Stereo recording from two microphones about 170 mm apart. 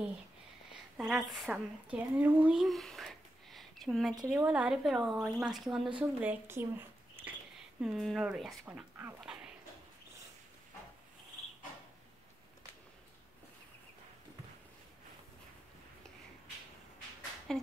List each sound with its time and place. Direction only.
0.9 s speech: centre (ahead or behind)
4.1 s speech: 20° right (ahead or behind)
4.5 s a woman's voice: 5° right (ahead or behind)
7.8 s speech: centre (ahead or behind)
9.2 s a sound: 5° right (ahead or behind)
17.5 s speech: centre (ahead or behind)